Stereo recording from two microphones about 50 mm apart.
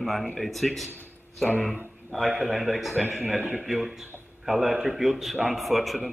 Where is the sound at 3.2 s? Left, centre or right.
Right.